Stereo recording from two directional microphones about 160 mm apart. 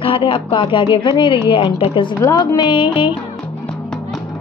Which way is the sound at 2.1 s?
20° left (ahead or behind).